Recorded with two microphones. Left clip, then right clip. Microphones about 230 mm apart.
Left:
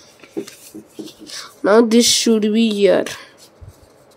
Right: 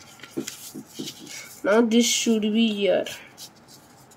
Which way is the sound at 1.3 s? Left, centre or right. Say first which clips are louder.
Left 8 dB; left.